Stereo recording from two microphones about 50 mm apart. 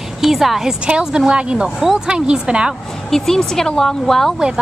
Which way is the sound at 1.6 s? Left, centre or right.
Centre.